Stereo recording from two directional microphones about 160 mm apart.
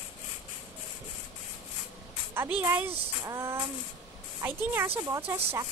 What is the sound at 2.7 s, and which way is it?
Speech, 15° right (ahead or behind).